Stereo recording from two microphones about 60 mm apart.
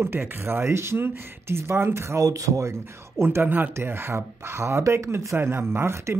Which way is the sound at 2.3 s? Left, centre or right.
Right.